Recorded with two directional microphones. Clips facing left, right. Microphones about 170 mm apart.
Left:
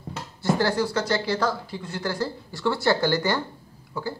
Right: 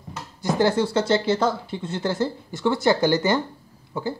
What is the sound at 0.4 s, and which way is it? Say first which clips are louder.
Speech: right 2 dB; 20° right (ahead or behind).